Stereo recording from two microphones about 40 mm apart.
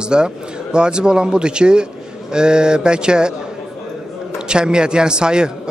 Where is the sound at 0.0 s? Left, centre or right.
Right.